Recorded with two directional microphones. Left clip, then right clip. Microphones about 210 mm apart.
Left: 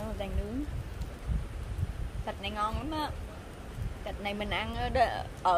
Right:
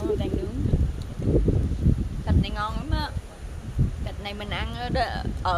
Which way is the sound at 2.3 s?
Centre (ahead or behind).